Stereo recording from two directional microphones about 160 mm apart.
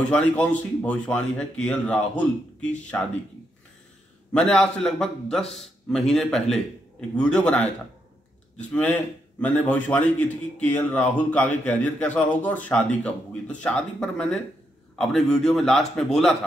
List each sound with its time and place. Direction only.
0.1 s a man's voice: 10° left (ahead or behind)
4.3 s a man's voice: 5° left (ahead or behind)